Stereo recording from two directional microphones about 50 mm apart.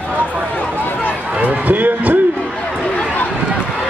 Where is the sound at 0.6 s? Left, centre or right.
Left.